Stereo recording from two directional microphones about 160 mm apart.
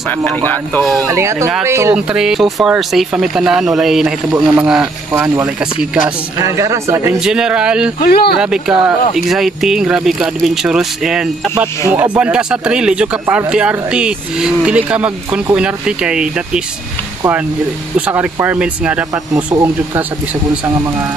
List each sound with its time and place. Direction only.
0.2 s speech: 10° left (ahead or behind)
1.0 s speech: 20° right (ahead or behind)
2.0 s a man's voice: 5° right (ahead or behind)
6.3 s speech: 20° right (ahead or behind)
7.2 s a man's voice: 5° right (ahead or behind)
8.0 s speech: 70° left (ahead or behind)
8.4 s a man's voice: 5° right (ahead or behind)
17.9 s speech: 10° right (ahead or behind)